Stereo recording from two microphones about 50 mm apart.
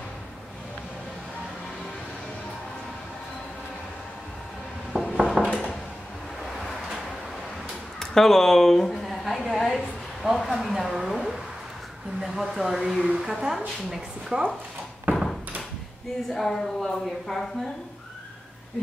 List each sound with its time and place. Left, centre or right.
5.0 s dishes: centre
6.4 s a sound: centre
8.0 s speech: centre
9.0 s a sound: centre
10.2 s a woman's voice: centre
15.1 s door: right
16.3 s speech: centre